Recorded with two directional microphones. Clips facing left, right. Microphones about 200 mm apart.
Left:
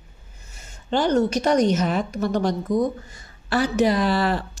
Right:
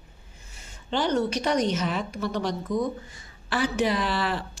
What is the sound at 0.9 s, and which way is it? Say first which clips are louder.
Speech: left 5 dB; 45° left (ahead or behind).